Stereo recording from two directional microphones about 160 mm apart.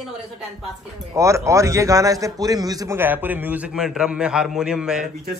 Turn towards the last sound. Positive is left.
turn(degrees=-5)  # may be behind; listen again after turning